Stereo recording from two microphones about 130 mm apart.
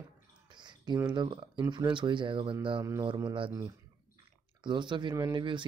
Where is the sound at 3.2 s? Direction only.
40° right (ahead or behind).